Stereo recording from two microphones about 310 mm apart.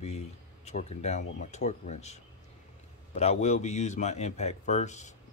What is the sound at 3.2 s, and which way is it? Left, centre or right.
Speech, left.